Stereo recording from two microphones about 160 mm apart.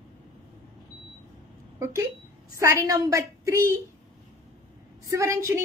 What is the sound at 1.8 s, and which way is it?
A woman's voice, 15° right (ahead or behind).